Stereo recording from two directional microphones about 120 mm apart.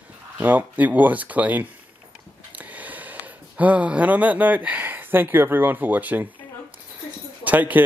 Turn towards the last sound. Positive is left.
turn(degrees=-15)  # may be behind; listen again after turning